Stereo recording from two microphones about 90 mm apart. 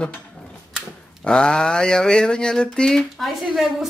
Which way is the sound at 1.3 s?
10° left (ahead or behind).